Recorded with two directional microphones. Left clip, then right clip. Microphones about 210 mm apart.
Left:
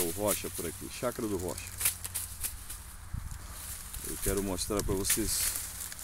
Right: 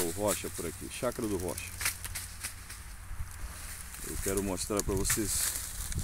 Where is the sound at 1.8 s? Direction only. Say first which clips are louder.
Right 2 dB; 60° left (ahead or behind).